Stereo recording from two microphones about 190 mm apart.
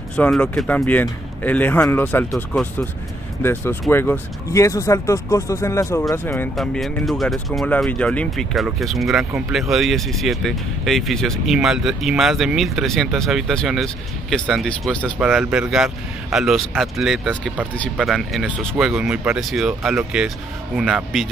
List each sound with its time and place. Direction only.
0.1 s speech: 5° left (ahead or behind)
3.9 s speech: 10° left (ahead or behind)